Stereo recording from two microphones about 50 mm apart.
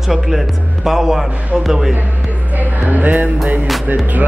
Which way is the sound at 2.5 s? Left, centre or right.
Right.